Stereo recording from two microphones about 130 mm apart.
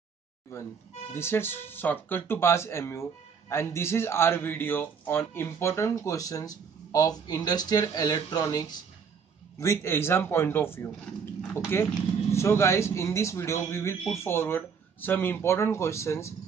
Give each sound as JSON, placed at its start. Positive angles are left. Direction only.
{"t": 1.1, "sound": "speech", "side_deg": 20}
{"t": 9.6, "sound": "speech", "side_deg": 20}